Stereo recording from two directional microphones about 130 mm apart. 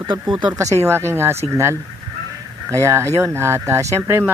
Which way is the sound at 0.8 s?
20° right (ahead or behind).